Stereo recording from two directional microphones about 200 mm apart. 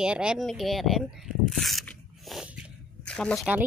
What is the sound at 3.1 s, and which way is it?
Speech, 5° left (ahead or behind).